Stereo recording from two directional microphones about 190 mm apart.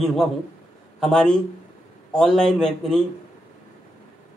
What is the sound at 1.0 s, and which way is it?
Speech, 5° left (ahead or behind).